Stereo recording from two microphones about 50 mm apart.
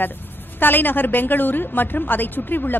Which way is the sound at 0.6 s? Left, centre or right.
Left.